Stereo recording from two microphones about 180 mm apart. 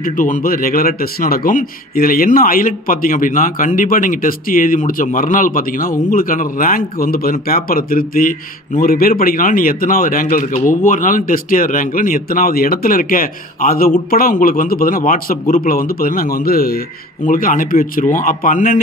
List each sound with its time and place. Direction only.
0.0 s speech: 50° left (ahead or behind)